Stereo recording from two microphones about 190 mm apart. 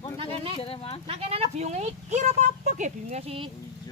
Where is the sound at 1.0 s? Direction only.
30° right (ahead or behind).